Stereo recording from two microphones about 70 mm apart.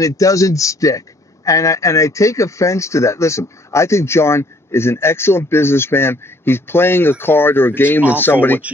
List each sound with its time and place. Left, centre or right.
0.0 s a man's voice: left